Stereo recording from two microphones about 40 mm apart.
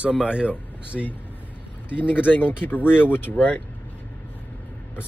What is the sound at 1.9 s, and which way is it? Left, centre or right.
Speech, left.